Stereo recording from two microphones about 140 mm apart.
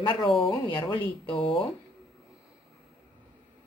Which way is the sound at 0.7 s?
30° left (ahead or behind).